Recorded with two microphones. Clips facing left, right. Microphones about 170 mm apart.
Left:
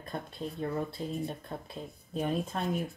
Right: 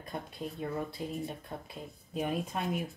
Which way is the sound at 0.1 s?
10° right (ahead or behind).